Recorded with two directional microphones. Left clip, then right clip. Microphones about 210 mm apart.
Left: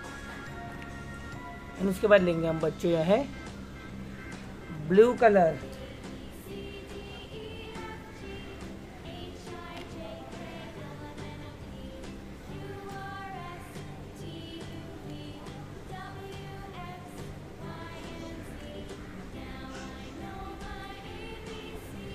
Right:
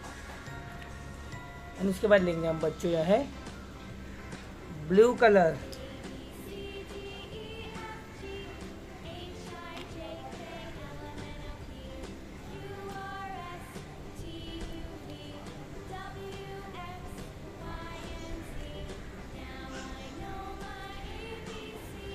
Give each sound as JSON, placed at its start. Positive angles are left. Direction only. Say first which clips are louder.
{"t": 1.8, "sound": "speech", "louder": "left 2 dB", "side_deg": 15}
{"t": 4.8, "sound": "speech", "louder": "left 1 dB", "side_deg": 5}